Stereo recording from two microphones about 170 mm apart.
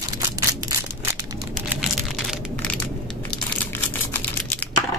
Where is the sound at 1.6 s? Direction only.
5° right (ahead or behind).